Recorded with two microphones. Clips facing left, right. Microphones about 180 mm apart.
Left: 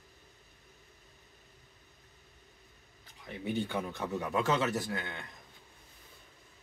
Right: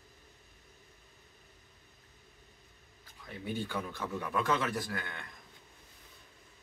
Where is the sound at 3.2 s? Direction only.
25° left (ahead or behind).